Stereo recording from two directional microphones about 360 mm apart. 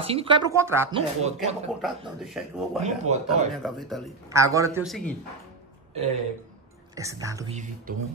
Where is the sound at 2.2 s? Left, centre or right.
Centre.